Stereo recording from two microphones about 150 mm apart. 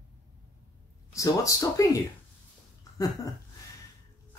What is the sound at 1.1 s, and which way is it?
Speech, 20° left (ahead or behind).